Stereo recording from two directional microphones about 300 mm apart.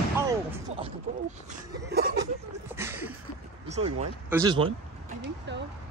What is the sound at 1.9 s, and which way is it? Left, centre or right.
Chuckle, right.